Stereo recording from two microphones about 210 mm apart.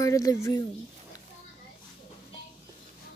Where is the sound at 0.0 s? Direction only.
15° left (ahead or behind).